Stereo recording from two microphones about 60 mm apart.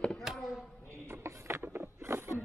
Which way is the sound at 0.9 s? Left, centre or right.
Right.